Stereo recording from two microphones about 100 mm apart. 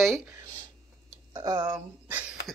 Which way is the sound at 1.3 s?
40° right (ahead or behind).